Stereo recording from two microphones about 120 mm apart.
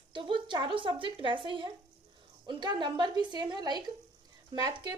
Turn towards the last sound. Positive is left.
turn(degrees=-35)  # may be behind; listen again after turning